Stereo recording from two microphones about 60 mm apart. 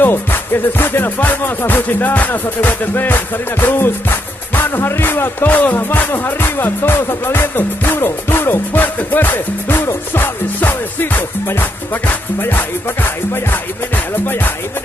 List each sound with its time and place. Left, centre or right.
0.0 s music: left